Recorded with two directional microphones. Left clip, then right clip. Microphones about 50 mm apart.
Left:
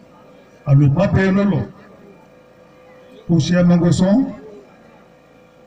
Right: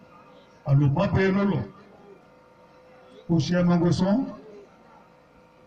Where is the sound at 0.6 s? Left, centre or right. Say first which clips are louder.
Left 8 dB; centre.